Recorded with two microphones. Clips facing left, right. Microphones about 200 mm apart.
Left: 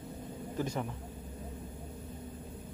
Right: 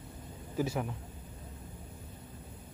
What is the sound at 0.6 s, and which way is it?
Speech, 5° right (ahead or behind).